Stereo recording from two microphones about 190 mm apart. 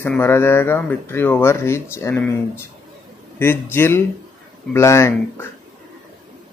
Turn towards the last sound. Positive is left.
turn(degrees=15)  # may be behind; listen again after turning